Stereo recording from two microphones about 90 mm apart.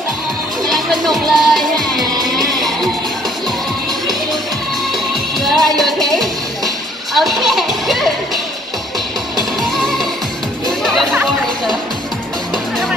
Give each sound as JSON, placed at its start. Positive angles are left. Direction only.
{"t": 0.7, "sound": "music", "side_deg": 0}
{"t": 5.4, "sound": "music", "side_deg": 0}
{"t": 9.8, "sound": "music", "side_deg": 0}